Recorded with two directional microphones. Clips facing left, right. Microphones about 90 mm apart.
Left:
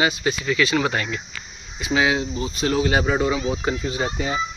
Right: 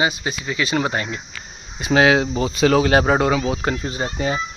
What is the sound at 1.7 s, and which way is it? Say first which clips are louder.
Speech: right 5 dB; 50° right (ahead or behind).